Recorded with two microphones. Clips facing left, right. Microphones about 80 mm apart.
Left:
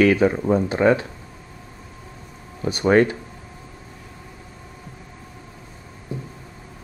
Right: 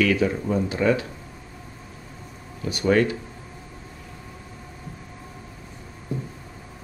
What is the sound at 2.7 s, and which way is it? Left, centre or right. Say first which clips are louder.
Speech: left 4 dB; left.